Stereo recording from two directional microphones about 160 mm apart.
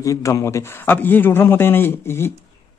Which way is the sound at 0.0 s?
20° left (ahead or behind).